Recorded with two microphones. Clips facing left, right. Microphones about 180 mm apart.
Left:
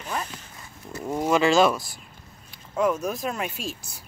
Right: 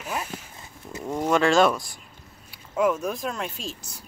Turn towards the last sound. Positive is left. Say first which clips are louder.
# left 2 dB
turn(degrees=10)  # may be behind; listen again after turning